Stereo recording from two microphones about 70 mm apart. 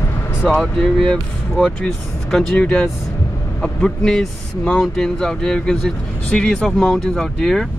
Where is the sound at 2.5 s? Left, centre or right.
Centre.